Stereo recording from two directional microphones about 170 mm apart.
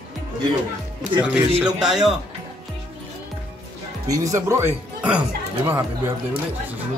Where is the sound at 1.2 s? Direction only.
5° right (ahead or behind).